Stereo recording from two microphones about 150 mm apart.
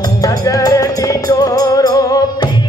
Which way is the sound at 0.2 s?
25° left (ahead or behind).